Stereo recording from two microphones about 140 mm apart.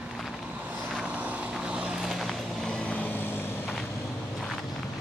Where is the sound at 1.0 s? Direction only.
10° right (ahead or behind); by 3.5 s 15° left (ahead or behind).